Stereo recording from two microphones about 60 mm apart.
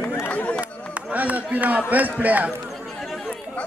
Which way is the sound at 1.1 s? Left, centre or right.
Right.